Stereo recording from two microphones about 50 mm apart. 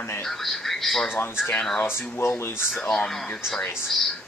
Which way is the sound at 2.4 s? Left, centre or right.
Left.